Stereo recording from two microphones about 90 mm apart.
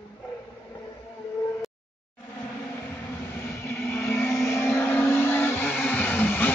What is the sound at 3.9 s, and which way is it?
Vehicle, 20° left (ahead or behind).